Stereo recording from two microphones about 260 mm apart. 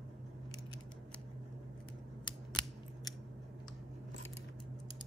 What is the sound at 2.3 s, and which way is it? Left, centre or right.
Scissors, centre.